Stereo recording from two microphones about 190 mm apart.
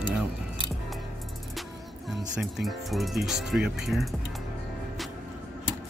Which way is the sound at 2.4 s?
Centre (ahead or behind).